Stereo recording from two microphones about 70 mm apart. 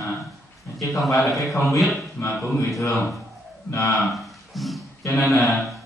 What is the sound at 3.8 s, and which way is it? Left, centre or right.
Speech, centre.